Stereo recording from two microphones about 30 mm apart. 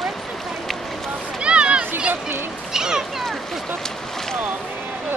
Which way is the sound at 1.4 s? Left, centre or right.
Right.